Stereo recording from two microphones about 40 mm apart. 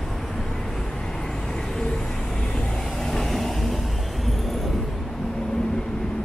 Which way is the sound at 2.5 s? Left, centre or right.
Centre.